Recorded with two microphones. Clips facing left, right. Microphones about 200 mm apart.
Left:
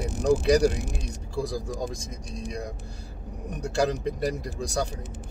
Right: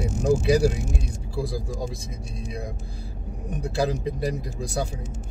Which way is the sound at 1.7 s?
45° left (ahead or behind).